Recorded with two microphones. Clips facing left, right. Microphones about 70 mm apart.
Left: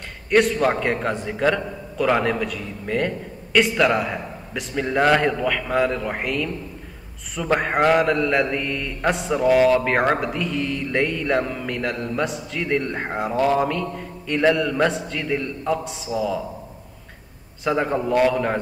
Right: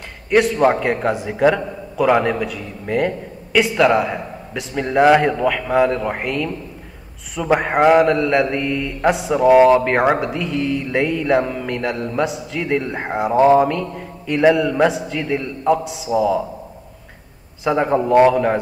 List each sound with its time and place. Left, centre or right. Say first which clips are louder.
0.3 s a man's voice: right 3 dB; centre
9.5 s speech: right 6 dB; right
9.8 s a man's voice: right 3 dB; centre
17.6 s a man's voice: right 5 dB; centre